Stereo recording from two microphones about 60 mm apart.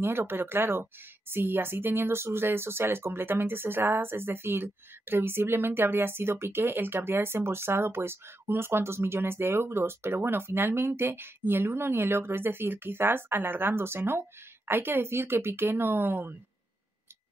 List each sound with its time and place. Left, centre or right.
0.0 s speech: right